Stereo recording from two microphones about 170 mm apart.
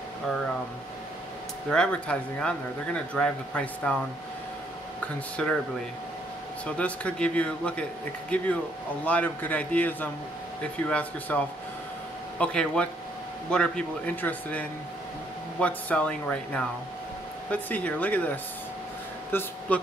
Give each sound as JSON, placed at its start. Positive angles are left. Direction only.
{"t": 1.7, "sound": "a man's voice", "side_deg": 5}
{"t": 5.0, "sound": "a man's voice", "side_deg": 5}
{"t": 6.6, "sound": "a man's voice", "side_deg": 5}